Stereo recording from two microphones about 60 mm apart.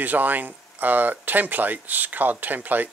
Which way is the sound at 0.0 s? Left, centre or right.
Right.